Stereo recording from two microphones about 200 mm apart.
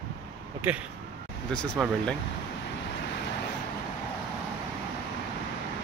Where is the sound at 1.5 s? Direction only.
5° left (ahead or behind).